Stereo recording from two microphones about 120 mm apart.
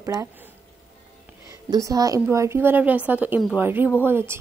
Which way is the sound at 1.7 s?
30° right (ahead or behind).